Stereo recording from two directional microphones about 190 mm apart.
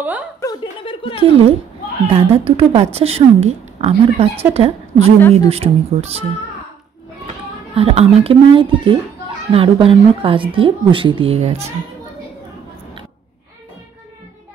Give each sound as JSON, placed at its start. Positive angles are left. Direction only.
{"t": 0.4, "sound": "a sound", "side_deg": 20}
{"t": 2.0, "sound": "a woman's voice", "side_deg": -30}
{"t": 7.7, "sound": "speech", "side_deg": -30}